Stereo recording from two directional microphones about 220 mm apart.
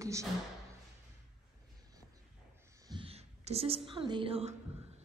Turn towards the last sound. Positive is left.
turn(degrees=-25)  # may be behind; listen again after turning